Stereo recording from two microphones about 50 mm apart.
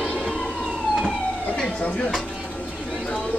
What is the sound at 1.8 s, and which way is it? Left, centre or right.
Speech, left.